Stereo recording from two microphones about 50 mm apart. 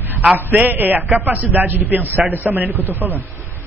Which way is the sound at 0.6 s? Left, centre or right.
Right.